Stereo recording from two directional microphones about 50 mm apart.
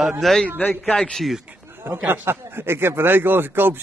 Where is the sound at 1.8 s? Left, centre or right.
Right.